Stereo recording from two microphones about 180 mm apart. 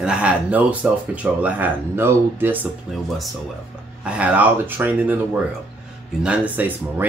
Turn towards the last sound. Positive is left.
turn(degrees=-10)  # may be behind; listen again after turning